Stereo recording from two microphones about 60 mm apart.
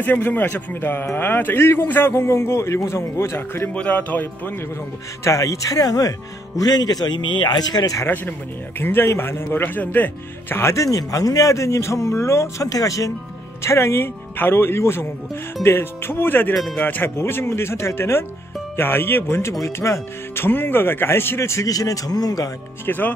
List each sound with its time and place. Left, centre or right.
0.0 s a man's voice: left
3.7 s speech: left
5.2 s speech: left
8.0 s a man's voice: left
10.6 s a man's voice: left
13.6 s a man's voice: left
17.2 s a man's voice: left
19.6 s a man's voice: left
20.3 s a man's voice: left
21.4 s speech: left
22.8 s a man's voice: left